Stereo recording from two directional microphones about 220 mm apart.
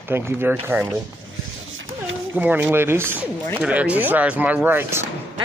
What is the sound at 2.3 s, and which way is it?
A man's voice, 10° right (ahead or behind).